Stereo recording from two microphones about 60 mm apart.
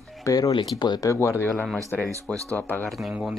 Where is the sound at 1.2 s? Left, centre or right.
Left.